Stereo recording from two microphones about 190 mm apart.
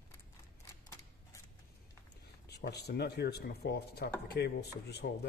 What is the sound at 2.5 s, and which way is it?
Speech, 60° left (ahead or behind).